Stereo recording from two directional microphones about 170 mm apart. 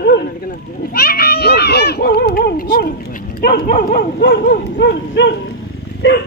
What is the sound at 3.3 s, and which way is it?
Dog, 65° left (ahead or behind).